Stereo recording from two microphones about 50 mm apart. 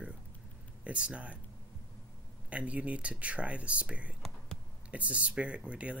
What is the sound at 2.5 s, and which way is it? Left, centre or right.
Speech, right.